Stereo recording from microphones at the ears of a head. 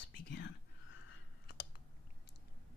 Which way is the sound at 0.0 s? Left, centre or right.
Left.